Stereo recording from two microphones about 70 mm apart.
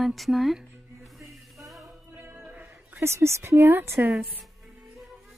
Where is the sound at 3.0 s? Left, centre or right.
Right.